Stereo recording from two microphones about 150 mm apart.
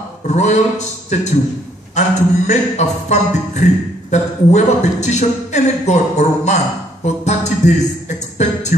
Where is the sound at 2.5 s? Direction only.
50° left (ahead or behind).